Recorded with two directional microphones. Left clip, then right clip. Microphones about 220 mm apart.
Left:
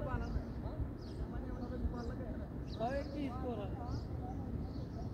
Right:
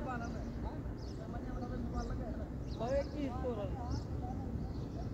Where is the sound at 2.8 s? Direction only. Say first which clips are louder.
Right 3 dB; 20° left (ahead or behind).